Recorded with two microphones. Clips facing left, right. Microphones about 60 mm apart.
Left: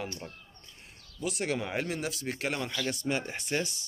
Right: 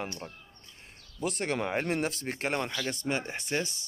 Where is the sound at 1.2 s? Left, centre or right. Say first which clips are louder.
Right 1 dB; right.